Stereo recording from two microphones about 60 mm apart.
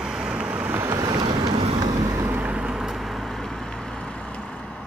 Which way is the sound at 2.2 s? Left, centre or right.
Right.